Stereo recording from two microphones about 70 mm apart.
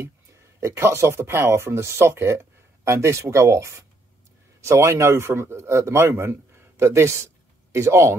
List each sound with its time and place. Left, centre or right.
0.6 s speech: right